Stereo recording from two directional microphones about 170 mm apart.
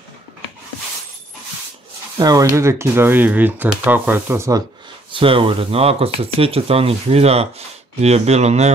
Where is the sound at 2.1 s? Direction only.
20° right (ahead or behind).